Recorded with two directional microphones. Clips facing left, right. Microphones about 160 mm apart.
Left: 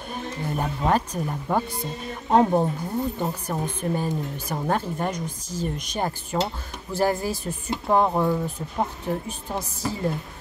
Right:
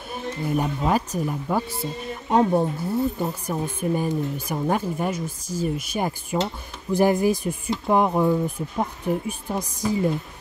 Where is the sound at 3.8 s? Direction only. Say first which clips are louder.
Right 5 dB; 10° right (ahead or behind).